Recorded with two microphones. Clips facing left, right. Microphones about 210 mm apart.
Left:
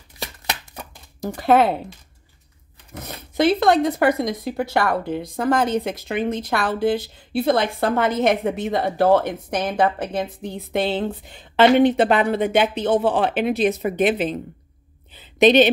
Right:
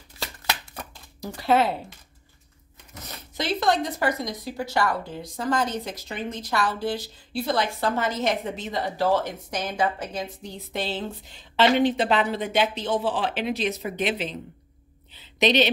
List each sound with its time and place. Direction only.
1.2 s speech: 50° left (ahead or behind)
2.9 s speech: 55° left (ahead or behind)
15.1 s a sound: 50° left (ahead or behind)